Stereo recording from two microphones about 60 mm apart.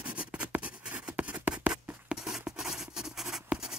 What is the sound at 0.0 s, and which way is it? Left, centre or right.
Writing, right.